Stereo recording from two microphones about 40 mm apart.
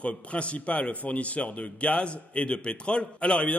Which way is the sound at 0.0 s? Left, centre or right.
Left.